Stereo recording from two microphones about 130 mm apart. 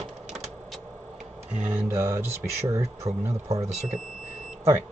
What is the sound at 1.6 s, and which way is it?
Speech, 15° right (ahead or behind).